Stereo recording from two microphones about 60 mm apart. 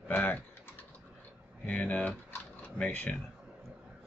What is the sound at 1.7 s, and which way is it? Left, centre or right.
Speech, left.